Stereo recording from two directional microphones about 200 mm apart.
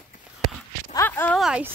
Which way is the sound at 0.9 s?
10° left (ahead or behind).